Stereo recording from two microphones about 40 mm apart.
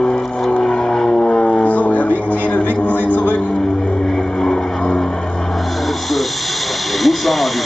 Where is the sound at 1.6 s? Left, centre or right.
Left.